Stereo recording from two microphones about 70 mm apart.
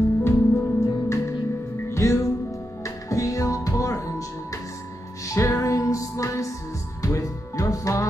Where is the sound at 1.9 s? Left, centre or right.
Left.